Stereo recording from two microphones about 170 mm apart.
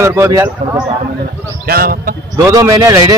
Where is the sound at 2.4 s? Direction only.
20° right (ahead or behind).